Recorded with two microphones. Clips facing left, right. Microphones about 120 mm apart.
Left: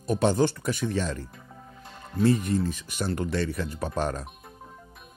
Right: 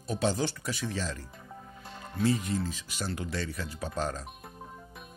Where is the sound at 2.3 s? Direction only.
55° left (ahead or behind).